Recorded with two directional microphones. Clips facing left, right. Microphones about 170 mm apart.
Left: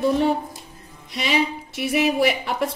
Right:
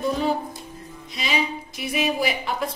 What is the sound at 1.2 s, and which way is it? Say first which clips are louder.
A woman's voice: left 4 dB; 70° left (ahead or behind).